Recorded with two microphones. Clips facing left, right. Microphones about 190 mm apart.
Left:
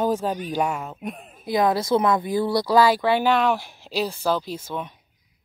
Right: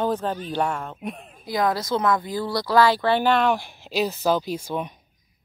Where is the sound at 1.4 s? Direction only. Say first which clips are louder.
Left 3 dB; 20° left (ahead or behind); by 4.9 s 15° right (ahead or behind).